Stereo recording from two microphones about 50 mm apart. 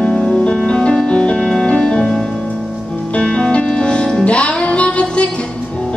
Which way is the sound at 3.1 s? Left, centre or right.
Left.